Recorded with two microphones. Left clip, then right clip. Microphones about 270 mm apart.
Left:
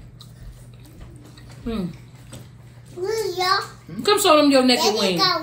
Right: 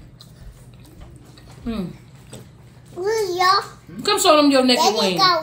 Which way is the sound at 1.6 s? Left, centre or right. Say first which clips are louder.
Even; centre.